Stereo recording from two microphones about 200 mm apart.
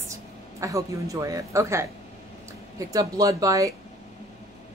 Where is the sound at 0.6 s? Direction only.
15° right (ahead or behind).